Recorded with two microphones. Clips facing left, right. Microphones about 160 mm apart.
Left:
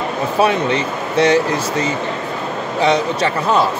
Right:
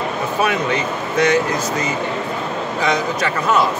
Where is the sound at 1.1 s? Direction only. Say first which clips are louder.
Left 3 dB; 30° left (ahead or behind).